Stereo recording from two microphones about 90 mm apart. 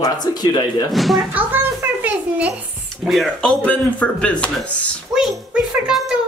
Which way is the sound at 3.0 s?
Centre (ahead or behind).